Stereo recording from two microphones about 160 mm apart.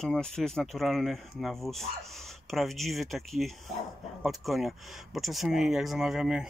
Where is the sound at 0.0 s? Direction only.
5° left (ahead or behind).